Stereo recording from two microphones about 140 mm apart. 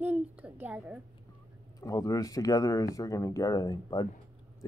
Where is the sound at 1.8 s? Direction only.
25° left (ahead or behind).